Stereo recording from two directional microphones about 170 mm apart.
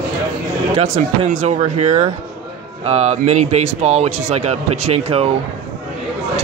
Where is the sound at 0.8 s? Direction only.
45° right (ahead or behind).